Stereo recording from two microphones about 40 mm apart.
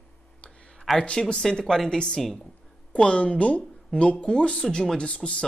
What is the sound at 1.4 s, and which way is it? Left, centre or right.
Speech, centre.